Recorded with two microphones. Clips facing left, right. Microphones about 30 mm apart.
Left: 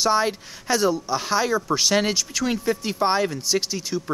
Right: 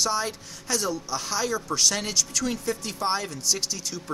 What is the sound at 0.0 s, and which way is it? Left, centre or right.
Speech, left.